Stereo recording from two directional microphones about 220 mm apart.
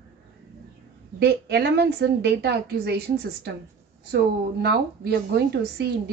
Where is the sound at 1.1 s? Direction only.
50° right (ahead or behind).